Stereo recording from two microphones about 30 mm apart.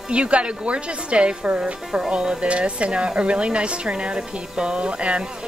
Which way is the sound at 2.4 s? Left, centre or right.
Right.